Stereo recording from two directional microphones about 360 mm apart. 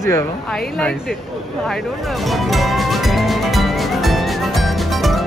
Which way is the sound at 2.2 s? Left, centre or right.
Centre.